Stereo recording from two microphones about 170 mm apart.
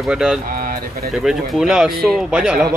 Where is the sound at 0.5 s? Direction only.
55° right (ahead or behind).